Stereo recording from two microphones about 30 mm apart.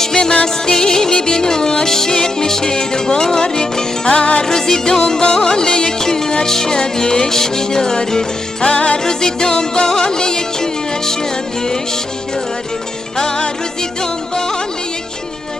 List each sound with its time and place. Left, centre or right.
0.0 s music: centre
4.4 s music: centre
8.7 s music: left
9.0 s music: centre